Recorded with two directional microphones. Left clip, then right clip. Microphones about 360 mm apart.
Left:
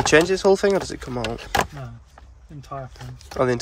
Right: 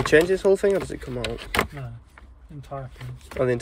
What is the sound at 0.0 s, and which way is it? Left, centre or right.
Speech, centre.